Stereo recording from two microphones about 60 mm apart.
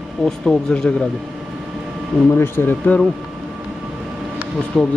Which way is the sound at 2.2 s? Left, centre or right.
Left.